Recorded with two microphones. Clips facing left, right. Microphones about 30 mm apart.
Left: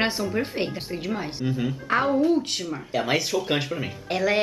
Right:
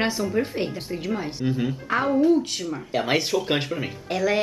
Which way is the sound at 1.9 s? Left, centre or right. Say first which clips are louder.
Right 1 dB; centre.